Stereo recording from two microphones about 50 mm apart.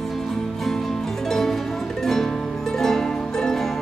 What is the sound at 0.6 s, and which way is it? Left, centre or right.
Music, centre.